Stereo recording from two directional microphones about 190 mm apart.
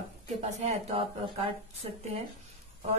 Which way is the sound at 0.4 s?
35° right (ahead or behind).